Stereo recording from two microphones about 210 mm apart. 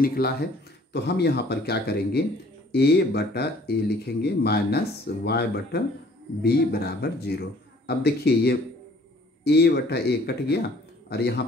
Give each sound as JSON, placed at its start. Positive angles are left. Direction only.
{"t": 0.0, "sound": "speech", "side_deg": 45}